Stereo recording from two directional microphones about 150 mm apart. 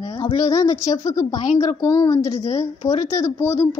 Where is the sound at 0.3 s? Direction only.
25° left (ahead or behind).